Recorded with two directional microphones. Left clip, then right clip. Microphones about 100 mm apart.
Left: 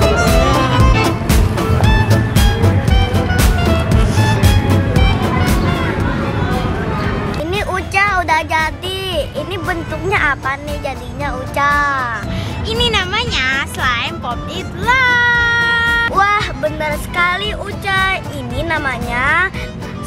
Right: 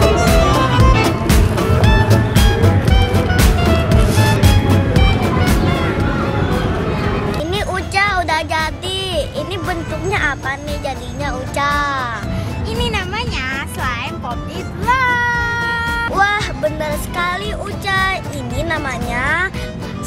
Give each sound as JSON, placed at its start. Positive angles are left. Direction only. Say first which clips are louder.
{"t": 0.0, "sound": "music", "louder": "even", "side_deg": 0}
{"t": 4.0, "sound": "music", "louder": "right 1 dB", "side_deg": -15}
{"t": 4.4, "sound": "music", "louder": "even", "side_deg": 0}
{"t": 7.5, "sound": "music", "louder": "left 3 dB", "side_deg": 0}
{"t": 10.0, "sound": "music", "louder": "left 4 dB", "side_deg": 5}
{"t": 11.5, "sound": "music", "louder": "left 3 dB", "side_deg": 5}
{"t": 12.7, "sound": "music", "louder": "left 6 dB", "side_deg": 15}
{"t": 15.0, "sound": "cat", "louder": "left 3 dB", "side_deg": 20}
{"t": 15.4, "sound": "music", "louder": "left 5 dB", "side_deg": 5}